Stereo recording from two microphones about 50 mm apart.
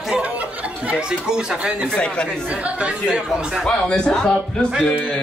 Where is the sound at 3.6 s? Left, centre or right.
Centre.